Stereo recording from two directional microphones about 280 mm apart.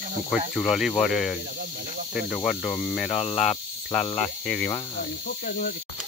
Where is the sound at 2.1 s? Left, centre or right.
Centre.